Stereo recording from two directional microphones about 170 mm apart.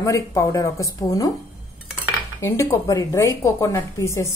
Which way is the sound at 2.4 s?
15° left (ahead or behind).